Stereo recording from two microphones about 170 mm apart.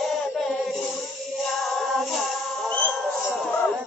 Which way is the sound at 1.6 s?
Centre (ahead or behind).